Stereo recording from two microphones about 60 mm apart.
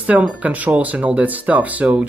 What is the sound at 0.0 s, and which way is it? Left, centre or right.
Speech, right.